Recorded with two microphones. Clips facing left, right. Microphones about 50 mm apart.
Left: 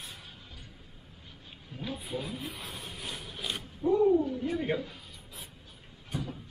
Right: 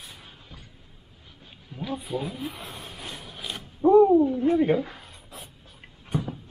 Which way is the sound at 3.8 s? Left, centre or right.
Right.